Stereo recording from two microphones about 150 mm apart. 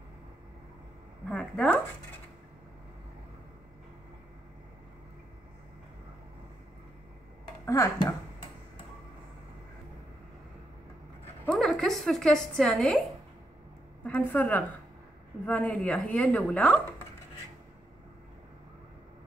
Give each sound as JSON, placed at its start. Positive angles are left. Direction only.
{"t": 1.3, "sound": "speech", "side_deg": 5}
{"t": 7.6, "sound": "speech", "side_deg": 20}
{"t": 11.4, "sound": "a woman's voice", "side_deg": 5}
{"t": 14.0, "sound": "a woman's voice", "side_deg": 10}